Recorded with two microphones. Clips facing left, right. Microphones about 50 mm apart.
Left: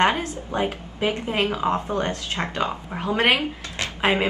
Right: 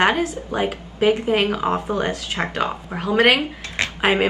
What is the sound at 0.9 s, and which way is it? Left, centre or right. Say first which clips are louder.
Speech: right 9 dB; centre.